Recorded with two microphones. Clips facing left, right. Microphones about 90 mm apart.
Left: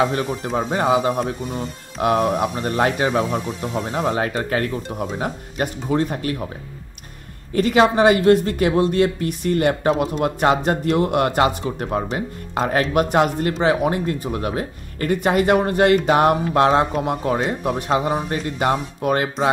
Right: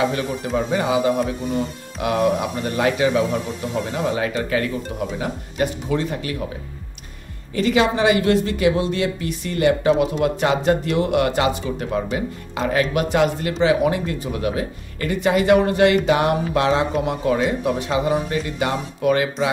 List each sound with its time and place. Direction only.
0.0 s speech: 40° left (ahead or behind)
7.5 s speech: 45° left (ahead or behind)